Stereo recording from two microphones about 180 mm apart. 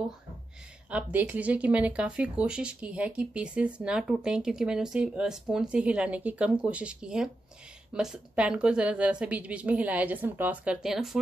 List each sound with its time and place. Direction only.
0.8 s a woman's voice: 5° right (ahead or behind)